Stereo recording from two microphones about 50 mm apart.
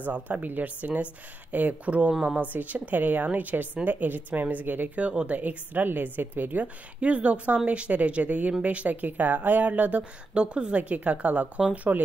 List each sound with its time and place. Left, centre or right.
0.0 s a woman's voice: right
1.9 s a woman's voice: right
4.9 s speech: right
5.4 s a woman's voice: right
7.0 s a woman's voice: right
10.3 s speech: centre